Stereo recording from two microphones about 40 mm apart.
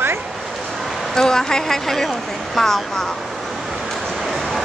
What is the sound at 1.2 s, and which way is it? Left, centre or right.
Speech, centre.